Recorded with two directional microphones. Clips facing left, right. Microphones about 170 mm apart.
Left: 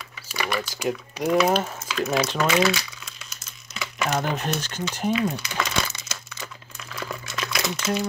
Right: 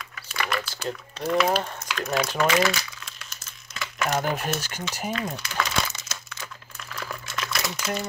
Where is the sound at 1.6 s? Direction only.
5° left (ahead or behind).